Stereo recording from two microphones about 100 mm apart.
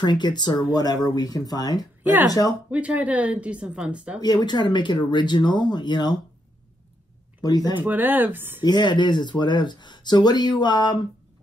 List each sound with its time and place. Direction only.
0.0 s speech: 45° left (ahead or behind)
2.7 s speech: 15° right (ahead or behind)
4.2 s speech: 45° left (ahead or behind)
7.4 s speech: 40° left (ahead or behind)
7.8 s speech: 20° right (ahead or behind)
8.6 s speech: 50° left (ahead or behind)